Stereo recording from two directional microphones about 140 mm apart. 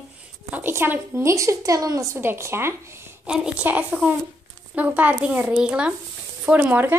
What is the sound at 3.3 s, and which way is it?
A woman's voice, 5° right (ahead or behind).